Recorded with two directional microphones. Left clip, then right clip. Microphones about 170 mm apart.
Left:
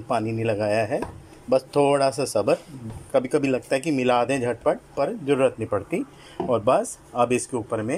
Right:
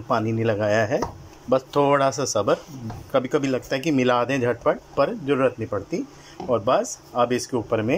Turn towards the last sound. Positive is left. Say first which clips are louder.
# right 4 dB
turn(degrees=-5)  # may be behind; listen again after turning